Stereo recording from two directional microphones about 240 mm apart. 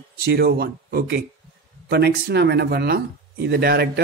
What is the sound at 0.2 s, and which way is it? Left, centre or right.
Speech, right.